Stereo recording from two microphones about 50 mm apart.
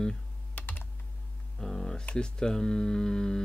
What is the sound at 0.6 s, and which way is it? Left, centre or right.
Computer keyboard, left.